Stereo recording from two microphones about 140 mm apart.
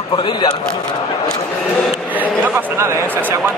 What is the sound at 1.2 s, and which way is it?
Speech, 5° left (ahead or behind).